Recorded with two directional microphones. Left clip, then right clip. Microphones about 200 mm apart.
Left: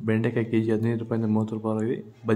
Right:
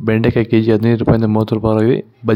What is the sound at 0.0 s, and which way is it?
Speech, 45° right (ahead or behind).